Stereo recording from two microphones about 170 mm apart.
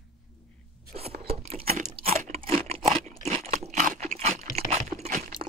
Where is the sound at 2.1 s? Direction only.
40° right (ahead or behind).